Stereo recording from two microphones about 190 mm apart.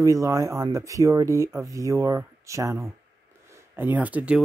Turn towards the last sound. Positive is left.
turn(degrees=-5)  # may be behind; listen again after turning